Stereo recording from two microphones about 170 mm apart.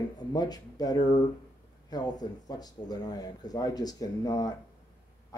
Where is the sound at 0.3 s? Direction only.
25° left (ahead or behind).